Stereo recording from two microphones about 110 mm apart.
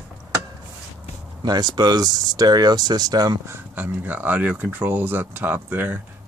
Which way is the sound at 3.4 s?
20° right (ahead or behind).